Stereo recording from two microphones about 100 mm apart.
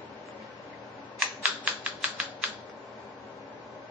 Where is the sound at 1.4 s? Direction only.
15° right (ahead or behind).